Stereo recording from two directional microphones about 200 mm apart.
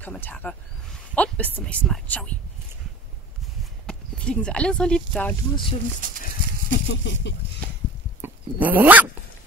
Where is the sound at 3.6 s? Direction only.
5° left (ahead or behind).